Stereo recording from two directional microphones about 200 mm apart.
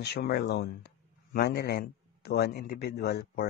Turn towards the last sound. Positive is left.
turn(degrees=55)  # may be behind; listen again after turning